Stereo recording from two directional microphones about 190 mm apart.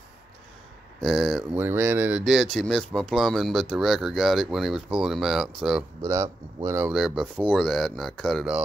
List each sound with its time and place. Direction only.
1.0 s speech: centre (ahead or behind)
1.5 s speech: 10° right (ahead or behind)
6.0 s speech: 15° right (ahead or behind)
6.9 s speech: centre (ahead or behind)